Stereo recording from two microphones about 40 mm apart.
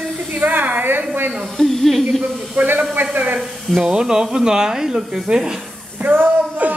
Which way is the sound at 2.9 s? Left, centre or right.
Right.